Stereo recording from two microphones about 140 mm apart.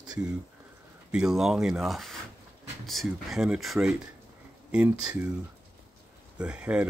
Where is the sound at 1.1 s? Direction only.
5° right (ahead or behind).